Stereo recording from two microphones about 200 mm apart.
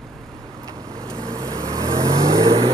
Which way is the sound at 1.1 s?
20° right (ahead or behind).